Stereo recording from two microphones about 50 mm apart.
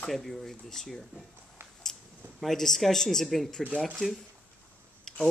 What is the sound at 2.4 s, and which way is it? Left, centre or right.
Speech, centre.